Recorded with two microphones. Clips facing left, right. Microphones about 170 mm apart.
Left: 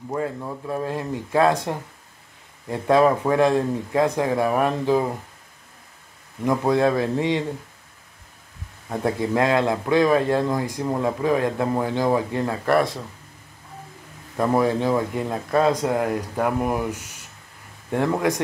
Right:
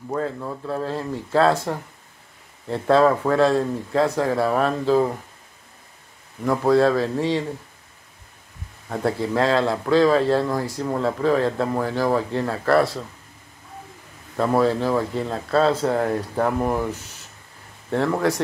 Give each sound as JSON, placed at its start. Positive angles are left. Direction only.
{"t": 0.1, "sound": "a man's voice", "side_deg": 10}
{"t": 6.4, "sound": "a man's voice", "side_deg": 15}
{"t": 8.8, "sound": "a man's voice", "side_deg": 15}
{"t": 14.3, "sound": "a man's voice", "side_deg": 15}